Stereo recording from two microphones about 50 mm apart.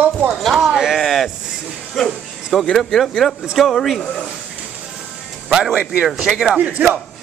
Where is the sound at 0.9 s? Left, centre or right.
Centre.